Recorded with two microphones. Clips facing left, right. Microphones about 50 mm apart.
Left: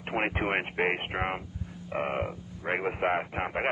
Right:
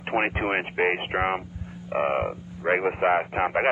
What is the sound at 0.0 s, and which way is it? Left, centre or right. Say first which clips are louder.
Radio: right 5 dB; right.